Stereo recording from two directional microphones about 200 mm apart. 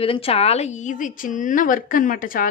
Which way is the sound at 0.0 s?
30° left (ahead or behind).